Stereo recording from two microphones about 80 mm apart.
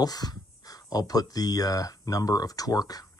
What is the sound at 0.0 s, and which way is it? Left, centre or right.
Speech, left.